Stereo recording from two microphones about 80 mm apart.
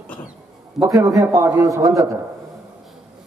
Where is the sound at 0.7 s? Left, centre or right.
Right.